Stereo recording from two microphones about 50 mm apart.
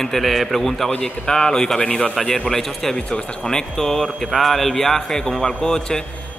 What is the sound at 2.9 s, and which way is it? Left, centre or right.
Speech, centre.